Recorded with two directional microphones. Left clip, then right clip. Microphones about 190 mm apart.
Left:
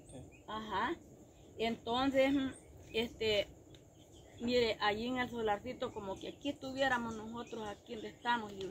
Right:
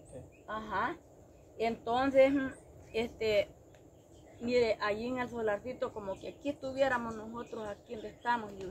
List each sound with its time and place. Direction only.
0.5 s speech: centre (ahead or behind)
4.5 s speech: 5° left (ahead or behind)